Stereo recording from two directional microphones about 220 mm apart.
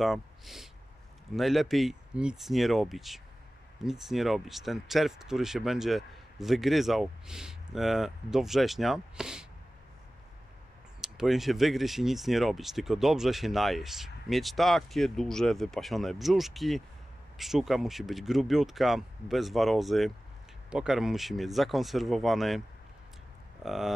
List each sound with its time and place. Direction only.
0.0 s speech: centre (ahead or behind)
11.0 s speech: centre (ahead or behind)
23.6 s speech: centre (ahead or behind)